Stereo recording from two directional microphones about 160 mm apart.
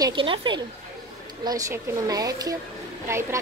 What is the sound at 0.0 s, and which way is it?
A woman's voice, 30° right (ahead or behind).